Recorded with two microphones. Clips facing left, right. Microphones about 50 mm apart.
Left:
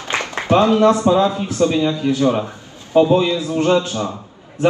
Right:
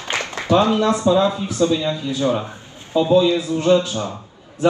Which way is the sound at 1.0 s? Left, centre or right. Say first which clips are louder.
Left 1 dB; left.